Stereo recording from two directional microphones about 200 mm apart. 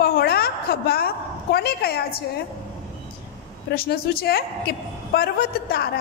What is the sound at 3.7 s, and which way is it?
A woman's voice, 50° left (ahead or behind).